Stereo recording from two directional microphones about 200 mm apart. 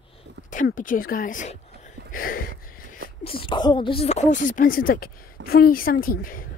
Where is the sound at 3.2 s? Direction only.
25° left (ahead or behind).